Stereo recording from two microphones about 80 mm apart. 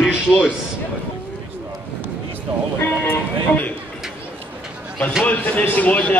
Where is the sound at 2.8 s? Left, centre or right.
Left.